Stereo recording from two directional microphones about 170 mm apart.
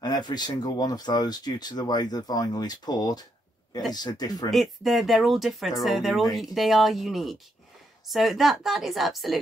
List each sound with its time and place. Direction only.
0.0 s speech: 25° left (ahead or behind)
4.5 s speech: centre (ahead or behind)